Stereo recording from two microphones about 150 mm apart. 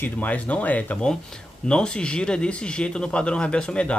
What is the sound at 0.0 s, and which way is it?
Speech, 10° left (ahead or behind).